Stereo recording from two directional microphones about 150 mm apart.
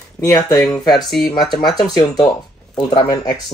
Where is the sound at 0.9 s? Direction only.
Centre (ahead or behind).